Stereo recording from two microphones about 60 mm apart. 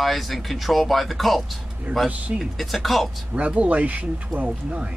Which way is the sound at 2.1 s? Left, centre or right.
Right.